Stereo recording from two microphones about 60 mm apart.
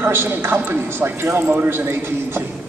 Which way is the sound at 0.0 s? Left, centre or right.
Right.